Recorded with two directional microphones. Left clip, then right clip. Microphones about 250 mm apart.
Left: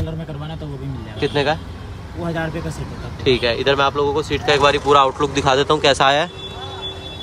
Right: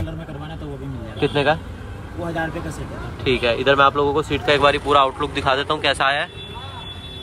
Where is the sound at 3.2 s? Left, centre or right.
Centre.